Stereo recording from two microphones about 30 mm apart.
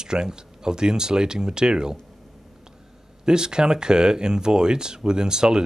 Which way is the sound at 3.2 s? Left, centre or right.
Right.